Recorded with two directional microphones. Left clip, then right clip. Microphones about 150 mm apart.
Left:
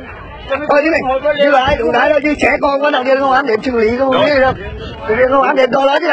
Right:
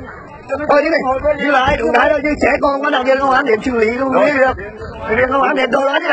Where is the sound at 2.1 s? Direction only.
45° left (ahead or behind).